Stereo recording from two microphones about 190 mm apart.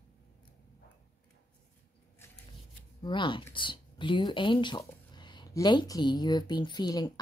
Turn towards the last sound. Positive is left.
turn(degrees=20)  # may be behind; listen again after turning